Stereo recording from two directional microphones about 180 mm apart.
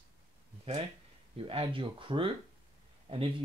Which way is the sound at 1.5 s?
30° right (ahead or behind).